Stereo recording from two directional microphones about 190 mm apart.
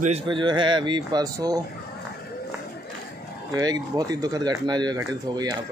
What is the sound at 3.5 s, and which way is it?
Speech, 20° right (ahead or behind).